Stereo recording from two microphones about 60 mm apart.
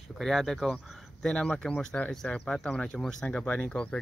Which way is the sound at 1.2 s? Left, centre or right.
Centre.